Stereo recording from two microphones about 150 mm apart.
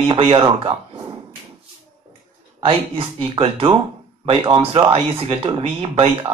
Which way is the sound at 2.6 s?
40° right (ahead or behind).